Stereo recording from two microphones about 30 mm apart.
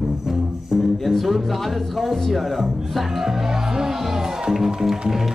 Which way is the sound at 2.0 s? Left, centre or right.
Centre.